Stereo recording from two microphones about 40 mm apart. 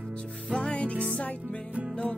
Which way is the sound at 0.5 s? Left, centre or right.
Left.